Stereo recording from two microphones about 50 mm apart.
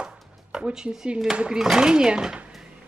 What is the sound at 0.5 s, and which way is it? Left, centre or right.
A woman's voice, centre.